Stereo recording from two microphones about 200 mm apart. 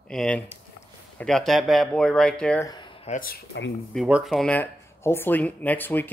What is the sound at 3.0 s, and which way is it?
Speech, 45° left (ahead or behind).